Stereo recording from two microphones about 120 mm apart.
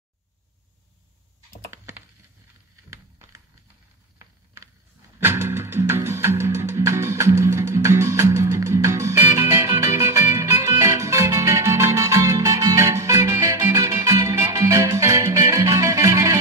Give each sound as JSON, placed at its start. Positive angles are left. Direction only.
{"t": 1.7, "sound": "computer keyboard", "side_deg": -20}
{"t": 2.9, "sound": "a sound", "side_deg": -25}
{"t": 5.2, "sound": "music", "side_deg": -20}